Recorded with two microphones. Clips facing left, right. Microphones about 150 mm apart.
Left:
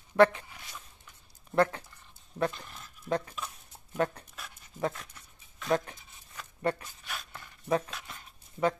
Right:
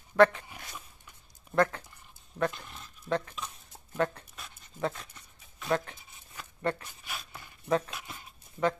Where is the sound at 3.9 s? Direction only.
15° left (ahead or behind).